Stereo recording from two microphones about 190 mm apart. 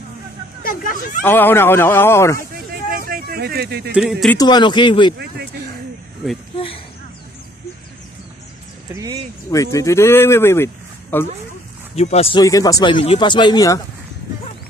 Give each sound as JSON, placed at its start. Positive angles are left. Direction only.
{"t": 0.7, "sound": "speech", "side_deg": 45}
{"t": 1.2, "sound": "speech", "side_deg": 10}
{"t": 3.1, "sound": "speech", "side_deg": -50}
{"t": 3.9, "sound": "speech", "side_deg": -5}
{"t": 4.4, "sound": "speech", "side_deg": 25}
{"t": 8.9, "sound": "speech", "side_deg": -20}
{"t": 9.5, "sound": "speech", "side_deg": 15}
{"t": 11.9, "sound": "speech", "side_deg": 35}
{"t": 12.4, "sound": "speech", "side_deg": 20}